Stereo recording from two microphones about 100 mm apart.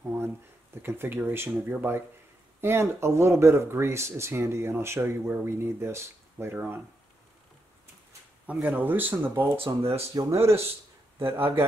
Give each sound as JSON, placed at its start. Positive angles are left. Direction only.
{"t": 0.1, "sound": "a sound", "side_deg": -20}
{"t": 0.8, "sound": "speech", "side_deg": -20}
{"t": 8.5, "sound": "speech", "side_deg": -15}